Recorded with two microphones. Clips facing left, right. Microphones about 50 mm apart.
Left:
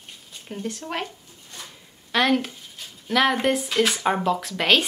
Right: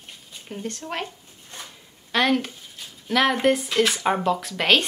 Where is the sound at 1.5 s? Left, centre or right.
Right.